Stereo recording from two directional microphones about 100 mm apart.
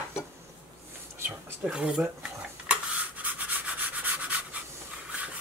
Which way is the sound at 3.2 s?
15° right (ahead or behind).